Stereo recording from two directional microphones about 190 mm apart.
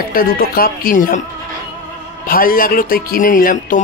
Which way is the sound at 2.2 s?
50° left (ahead or behind).